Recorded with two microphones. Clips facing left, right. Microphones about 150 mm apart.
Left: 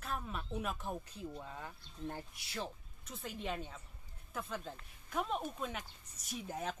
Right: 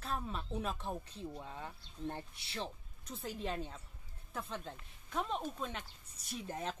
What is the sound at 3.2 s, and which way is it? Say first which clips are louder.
Speech: right 1 dB; centre (ahead or behind).